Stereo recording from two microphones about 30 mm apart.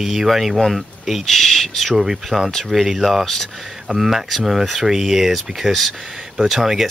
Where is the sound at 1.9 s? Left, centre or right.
Centre.